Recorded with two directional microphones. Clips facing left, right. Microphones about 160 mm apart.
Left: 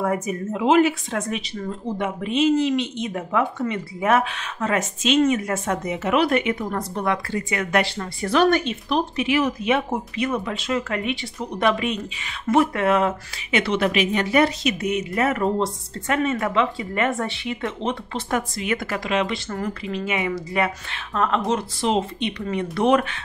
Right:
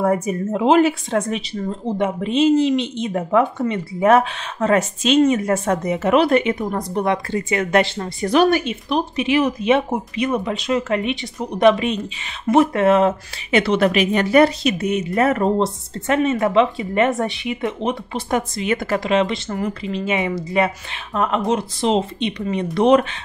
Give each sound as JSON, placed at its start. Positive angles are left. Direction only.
{"t": 0.0, "sound": "speech", "side_deg": -35}
{"t": 6.6, "sound": "speech", "side_deg": -15}
{"t": 9.1, "sound": "speech", "side_deg": -20}
{"t": 18.6, "sound": "speech", "side_deg": -30}